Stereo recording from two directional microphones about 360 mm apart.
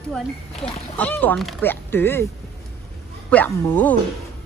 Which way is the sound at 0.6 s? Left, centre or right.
Centre.